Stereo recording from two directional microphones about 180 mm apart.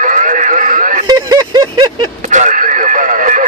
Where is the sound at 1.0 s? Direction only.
20° right (ahead or behind).